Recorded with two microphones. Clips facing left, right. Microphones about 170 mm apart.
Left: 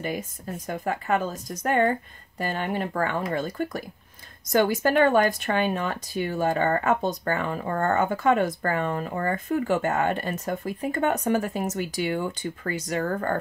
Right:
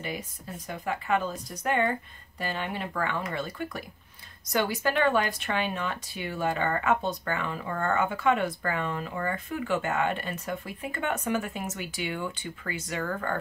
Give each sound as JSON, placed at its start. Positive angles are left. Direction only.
{"t": 0.7, "sound": "speech", "side_deg": 45}